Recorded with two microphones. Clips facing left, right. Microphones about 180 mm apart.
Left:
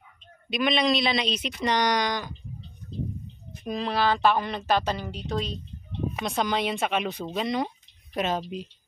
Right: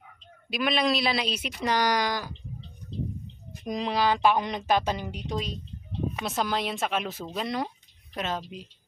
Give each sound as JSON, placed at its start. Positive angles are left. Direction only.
{"t": 0.5, "sound": "speech", "side_deg": -5}
{"t": 3.6, "sound": "speech", "side_deg": -15}
{"t": 8.1, "sound": "speech", "side_deg": 15}